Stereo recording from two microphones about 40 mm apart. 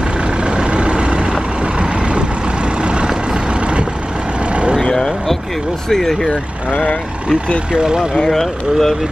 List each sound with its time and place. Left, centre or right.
0.4 s vehicle: right
5.9 s speech: centre
6.7 s speech: left
7.7 s speech: right
8.3 s speech: centre